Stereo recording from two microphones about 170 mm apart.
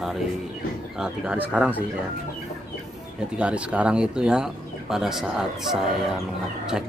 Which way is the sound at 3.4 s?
5° right (ahead or behind).